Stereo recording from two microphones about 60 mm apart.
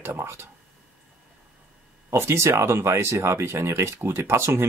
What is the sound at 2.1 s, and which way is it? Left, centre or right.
Speech, right.